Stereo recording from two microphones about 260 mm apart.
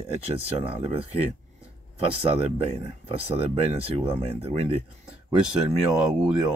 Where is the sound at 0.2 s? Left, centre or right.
Right.